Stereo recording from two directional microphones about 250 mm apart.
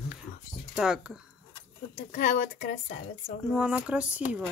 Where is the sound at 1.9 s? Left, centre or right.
Left.